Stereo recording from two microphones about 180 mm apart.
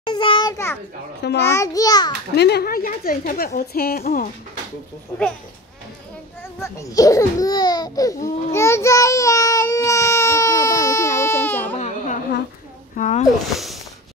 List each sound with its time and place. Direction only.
0.0 s children playing: 25° left (ahead or behind)
1.2 s a child's voice: 70° left (ahead or behind)
1.5 s speech: 20° left (ahead or behind)
2.3 s a woman's voice: 65° left (ahead or behind)
6.6 s speech: 20° left (ahead or behind)
8.5 s a sound: 15° left (ahead or behind)
11.1 s baby cry: 15° left (ahead or behind)
11.7 s a sound: 40° left (ahead or behind)
12.9 s speech: 40° left (ahead or behind)
13.5 s a sound: centre (ahead or behind)